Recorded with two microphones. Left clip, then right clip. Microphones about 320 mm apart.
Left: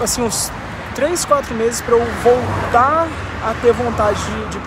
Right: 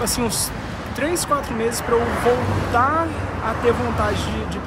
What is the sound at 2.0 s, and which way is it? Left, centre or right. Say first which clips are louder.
Speech: left 4 dB; centre.